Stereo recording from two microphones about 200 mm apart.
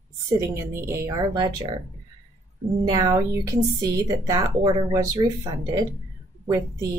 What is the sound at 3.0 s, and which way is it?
Speech, 20° right (ahead or behind).